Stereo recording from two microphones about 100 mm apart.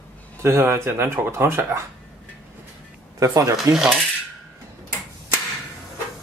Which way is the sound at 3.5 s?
5° right (ahead or behind).